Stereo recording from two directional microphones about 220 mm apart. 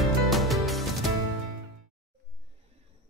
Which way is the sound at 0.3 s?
Centre (ahead or behind).